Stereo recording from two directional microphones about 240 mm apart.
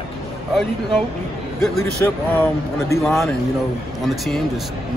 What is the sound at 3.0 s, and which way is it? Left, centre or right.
Speech, centre.